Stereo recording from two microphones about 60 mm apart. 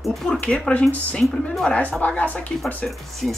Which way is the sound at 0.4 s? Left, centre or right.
Centre.